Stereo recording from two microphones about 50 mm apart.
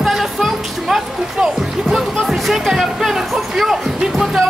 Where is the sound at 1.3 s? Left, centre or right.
Centre.